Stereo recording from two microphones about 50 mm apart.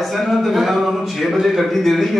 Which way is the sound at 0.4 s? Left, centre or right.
Centre.